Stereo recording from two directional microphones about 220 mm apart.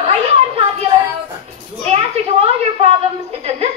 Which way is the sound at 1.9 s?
25° right (ahead or behind).